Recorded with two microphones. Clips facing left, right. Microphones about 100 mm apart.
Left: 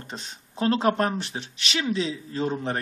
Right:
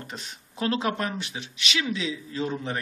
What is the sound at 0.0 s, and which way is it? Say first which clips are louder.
Speech: left 1 dB; 30° left (ahead or behind).